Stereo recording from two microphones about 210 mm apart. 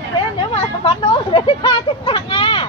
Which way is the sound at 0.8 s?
25° left (ahead or behind).